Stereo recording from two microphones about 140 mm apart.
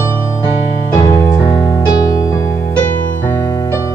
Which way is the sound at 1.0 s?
20° left (ahead or behind).